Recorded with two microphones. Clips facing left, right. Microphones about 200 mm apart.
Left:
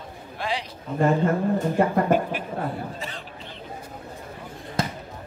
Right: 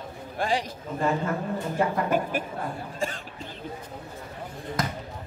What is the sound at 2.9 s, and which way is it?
Chatter, 45° right (ahead or behind).